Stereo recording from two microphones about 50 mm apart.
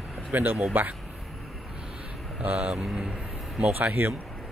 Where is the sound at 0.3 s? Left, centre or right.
Right.